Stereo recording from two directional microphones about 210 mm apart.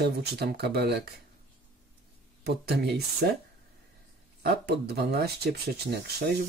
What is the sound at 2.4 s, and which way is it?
Speech, 50° right (ahead or behind).